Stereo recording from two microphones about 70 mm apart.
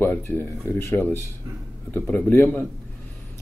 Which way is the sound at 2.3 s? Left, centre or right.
Left.